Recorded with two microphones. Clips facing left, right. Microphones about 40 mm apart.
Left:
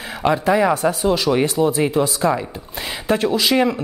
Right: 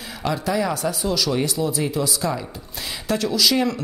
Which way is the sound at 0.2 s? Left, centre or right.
Left.